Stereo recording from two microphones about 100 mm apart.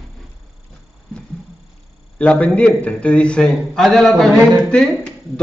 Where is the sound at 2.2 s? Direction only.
10° left (ahead or behind).